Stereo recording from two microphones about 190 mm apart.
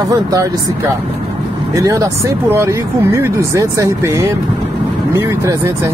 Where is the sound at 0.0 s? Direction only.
20° right (ahead or behind).